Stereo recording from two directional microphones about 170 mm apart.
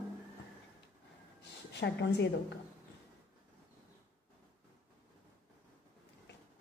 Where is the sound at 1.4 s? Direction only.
90° left.